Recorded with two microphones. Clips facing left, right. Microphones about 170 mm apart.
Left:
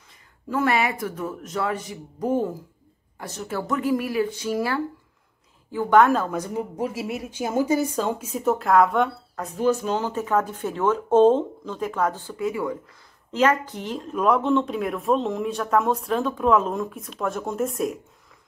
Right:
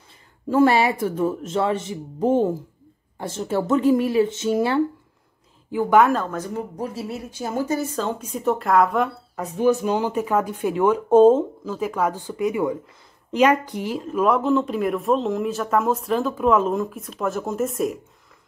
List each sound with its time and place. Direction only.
0.5 s speech: 30° right (ahead or behind)
5.7 s speech: 10° right (ahead or behind)
6.2 s speech: 10° left (ahead or behind)